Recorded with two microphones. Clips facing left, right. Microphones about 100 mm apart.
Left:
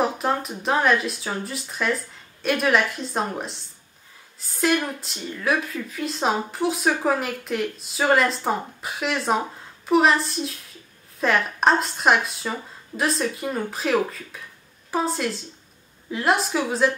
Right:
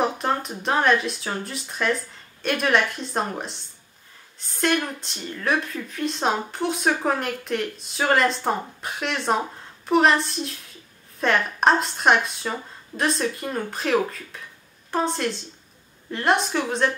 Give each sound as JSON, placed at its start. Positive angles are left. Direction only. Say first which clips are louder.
{"t": 0.0, "sound": "speech", "louder": "left 1 dB", "side_deg": 0}